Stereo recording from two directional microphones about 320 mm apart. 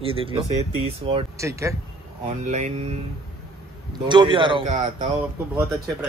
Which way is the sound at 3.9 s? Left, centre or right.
Centre.